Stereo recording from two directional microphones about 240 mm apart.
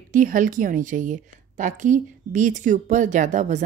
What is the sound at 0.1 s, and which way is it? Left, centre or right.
A woman's voice, right.